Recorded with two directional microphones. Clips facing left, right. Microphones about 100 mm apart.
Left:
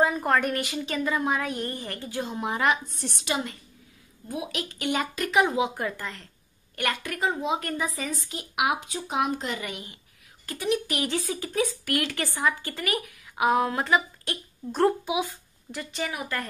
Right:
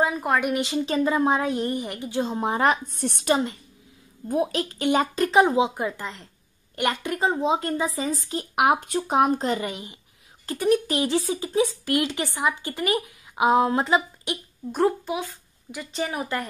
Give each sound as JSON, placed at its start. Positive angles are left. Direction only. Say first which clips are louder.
{"t": 0.0, "sound": "a woman's voice", "louder": "even", "side_deg": -5}
{"t": 0.6, "sound": "a woman's voice", "louder": "right 6 dB", "side_deg": -30}
{"t": 5.8, "sound": "a woman's voice", "louder": "right 3 dB", "side_deg": -20}
{"t": 10.4, "sound": "a woman's voice", "louder": "right 6 dB", "side_deg": -35}
{"t": 11.0, "sound": "speech", "louder": "right 5 dB", "side_deg": -25}
{"t": 14.8, "sound": "speech", "louder": "even", "side_deg": 5}
{"t": 15.9, "sound": "a woman's voice", "louder": "right 4 dB", "side_deg": -30}